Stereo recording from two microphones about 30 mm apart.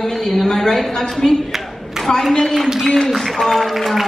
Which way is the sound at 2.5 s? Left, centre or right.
Centre.